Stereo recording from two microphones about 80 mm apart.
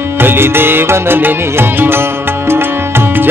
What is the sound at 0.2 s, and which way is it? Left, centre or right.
Music, right.